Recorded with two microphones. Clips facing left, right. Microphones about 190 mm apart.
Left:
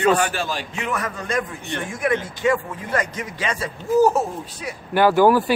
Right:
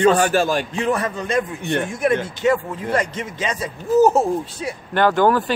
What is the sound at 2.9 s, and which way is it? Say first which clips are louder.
Speech: right 1 dB; 25° right (ahead or behind).